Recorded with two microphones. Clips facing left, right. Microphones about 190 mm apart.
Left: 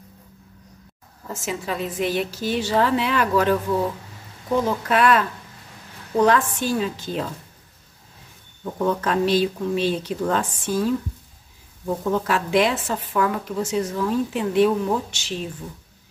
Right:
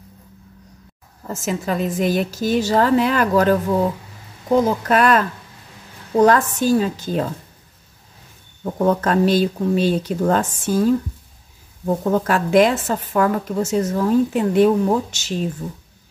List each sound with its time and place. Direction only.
1.3 s a woman's voice: 45° right (ahead or behind)
4.8 s a woman's voice: 45° right (ahead or behind)
6.2 s a woman's voice: 40° right (ahead or behind)
8.7 s a woman's voice: 45° right (ahead or behind)
11.8 s a woman's voice: 45° right (ahead or behind)